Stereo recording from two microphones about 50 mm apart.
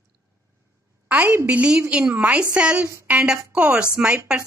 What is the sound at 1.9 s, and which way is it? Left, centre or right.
A woman's voice, centre.